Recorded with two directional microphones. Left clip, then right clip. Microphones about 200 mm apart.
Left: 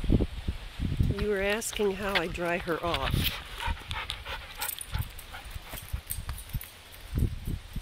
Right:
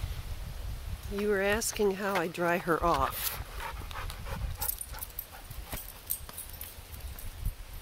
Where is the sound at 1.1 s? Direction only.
5° left (ahead or behind).